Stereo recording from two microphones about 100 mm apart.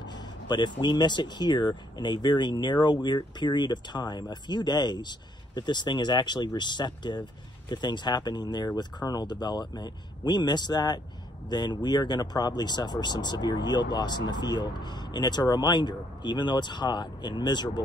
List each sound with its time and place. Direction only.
0.0 s speech: 50° left (ahead or behind)